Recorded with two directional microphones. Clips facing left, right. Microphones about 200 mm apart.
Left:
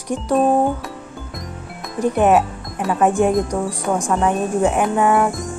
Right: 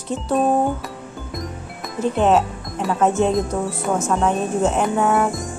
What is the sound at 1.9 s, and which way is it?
Music, 15° left (ahead or behind).